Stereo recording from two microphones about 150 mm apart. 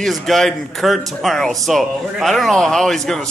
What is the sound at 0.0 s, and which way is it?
Speech, centre (ahead or behind).